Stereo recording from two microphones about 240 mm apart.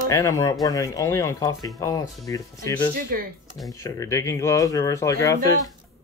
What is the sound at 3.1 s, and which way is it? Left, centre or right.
Speech, right.